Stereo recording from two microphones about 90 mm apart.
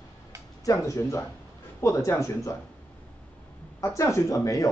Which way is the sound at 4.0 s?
35° left (ahead or behind).